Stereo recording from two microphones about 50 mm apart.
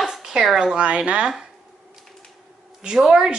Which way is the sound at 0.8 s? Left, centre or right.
Right.